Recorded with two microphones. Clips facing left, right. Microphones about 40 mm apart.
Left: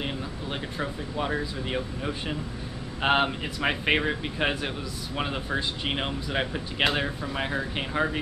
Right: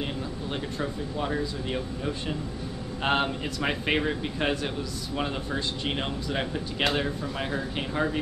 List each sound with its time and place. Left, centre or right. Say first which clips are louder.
0.0 s speech: even; centre